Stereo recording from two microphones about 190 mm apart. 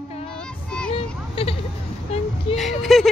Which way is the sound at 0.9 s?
30° left (ahead or behind).